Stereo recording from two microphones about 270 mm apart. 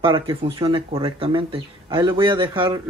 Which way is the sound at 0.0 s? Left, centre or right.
Centre.